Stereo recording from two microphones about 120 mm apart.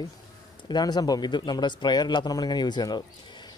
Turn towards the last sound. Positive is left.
turn(degrees=35)  # may be behind; listen again after turning